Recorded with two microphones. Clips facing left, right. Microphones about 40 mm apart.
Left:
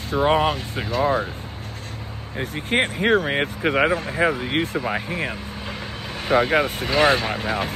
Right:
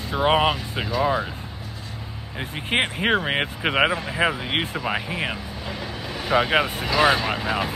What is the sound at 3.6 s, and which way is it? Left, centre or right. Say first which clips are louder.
Speech: left 2 dB; right.